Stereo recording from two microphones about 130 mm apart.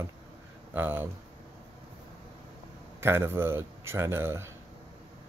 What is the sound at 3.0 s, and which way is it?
Speech, 20° right (ahead or behind).